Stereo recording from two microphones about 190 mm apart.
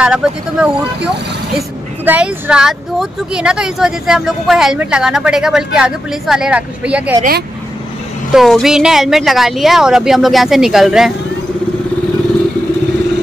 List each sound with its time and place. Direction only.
0.0 s speech: 5° right (ahead or behind)
2.0 s speech: 10° right (ahead or behind)
7.2 s speech: 50° right (ahead or behind)
8.3 s speech: centre (ahead or behind)